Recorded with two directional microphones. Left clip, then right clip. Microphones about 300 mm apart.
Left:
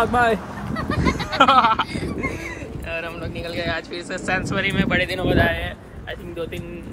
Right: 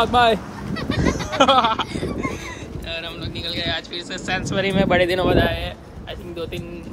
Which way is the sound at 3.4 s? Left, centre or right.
Centre.